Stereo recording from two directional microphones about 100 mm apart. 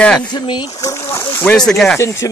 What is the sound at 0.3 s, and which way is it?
Speech, 50° left (ahead or behind).